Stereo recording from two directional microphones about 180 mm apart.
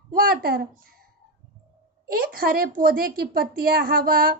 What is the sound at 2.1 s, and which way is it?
A woman's voice, 55° right (ahead or behind).